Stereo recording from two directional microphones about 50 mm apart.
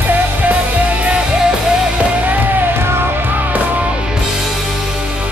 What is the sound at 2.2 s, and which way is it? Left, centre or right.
Music, right.